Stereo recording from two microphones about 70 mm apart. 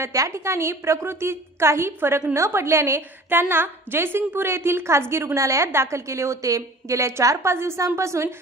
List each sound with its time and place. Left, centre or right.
0.0 s a woman's voice: right